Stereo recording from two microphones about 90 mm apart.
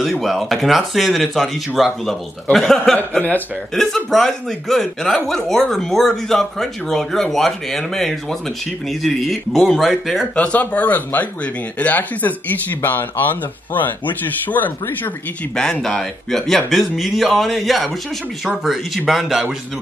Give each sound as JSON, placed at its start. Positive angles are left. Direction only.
{"t": 0.2, "sound": "speech", "side_deg": 0}
{"t": 3.0, "sound": "speech", "side_deg": 20}
{"t": 3.7, "sound": "speech", "side_deg": 5}
{"t": 10.3, "sound": "speech", "side_deg": 15}
{"t": 15.5, "sound": "speech", "side_deg": 10}